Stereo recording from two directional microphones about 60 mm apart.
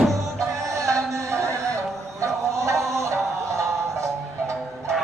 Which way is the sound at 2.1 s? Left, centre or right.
Right.